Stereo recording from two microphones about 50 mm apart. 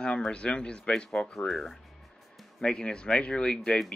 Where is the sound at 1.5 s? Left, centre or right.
Centre.